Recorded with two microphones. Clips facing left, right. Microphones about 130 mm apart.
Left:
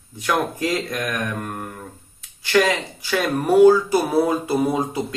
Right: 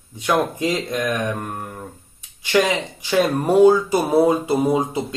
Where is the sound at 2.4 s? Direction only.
20° right (ahead or behind).